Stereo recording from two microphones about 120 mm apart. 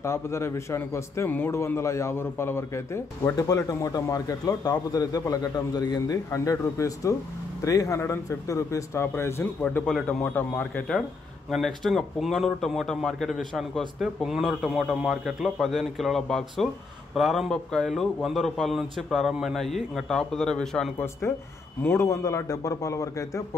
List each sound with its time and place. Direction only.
0.0 s a man's voice: 20° left (ahead or behind)
11.5 s a man's voice: centre (ahead or behind)
21.8 s a man's voice: 20° left (ahead or behind)